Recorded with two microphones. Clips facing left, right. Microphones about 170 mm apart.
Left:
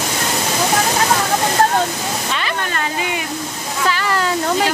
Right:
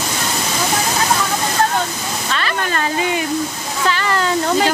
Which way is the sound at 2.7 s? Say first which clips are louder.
Right 3 dB; 35° right (ahead or behind).